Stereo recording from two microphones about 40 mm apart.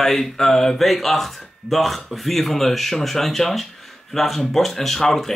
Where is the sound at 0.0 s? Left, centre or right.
Centre.